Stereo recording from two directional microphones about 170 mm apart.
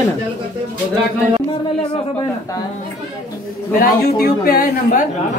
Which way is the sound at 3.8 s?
60° left (ahead or behind).